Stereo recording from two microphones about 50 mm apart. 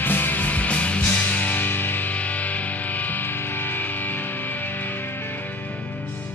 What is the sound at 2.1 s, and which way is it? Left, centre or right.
Music, left.